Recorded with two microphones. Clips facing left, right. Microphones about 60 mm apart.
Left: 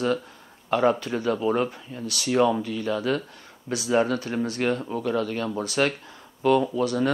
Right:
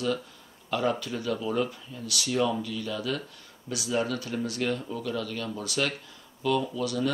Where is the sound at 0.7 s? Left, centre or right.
Left.